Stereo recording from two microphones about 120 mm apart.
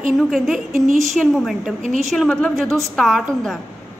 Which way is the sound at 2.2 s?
10° left (ahead or behind).